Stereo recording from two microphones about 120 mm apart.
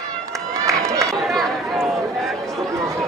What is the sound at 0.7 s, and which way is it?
Run, 25° right (ahead or behind).